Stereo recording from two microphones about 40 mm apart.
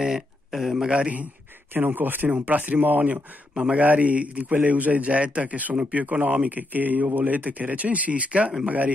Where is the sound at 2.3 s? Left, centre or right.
Right.